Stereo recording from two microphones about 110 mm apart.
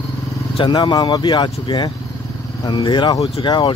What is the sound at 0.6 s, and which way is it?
Speech, 45° left (ahead or behind).